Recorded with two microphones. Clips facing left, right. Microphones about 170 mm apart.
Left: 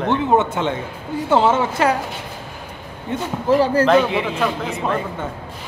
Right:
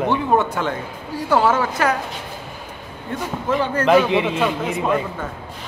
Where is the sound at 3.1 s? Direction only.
20° left (ahead or behind).